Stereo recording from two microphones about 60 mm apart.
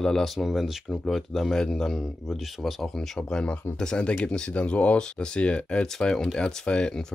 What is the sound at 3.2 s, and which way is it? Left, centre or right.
Speech, centre.